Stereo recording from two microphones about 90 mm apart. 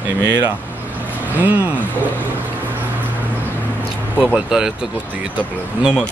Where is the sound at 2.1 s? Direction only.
20° left (ahead or behind).